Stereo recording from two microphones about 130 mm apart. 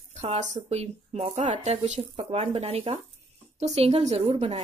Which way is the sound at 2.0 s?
50° right (ahead or behind).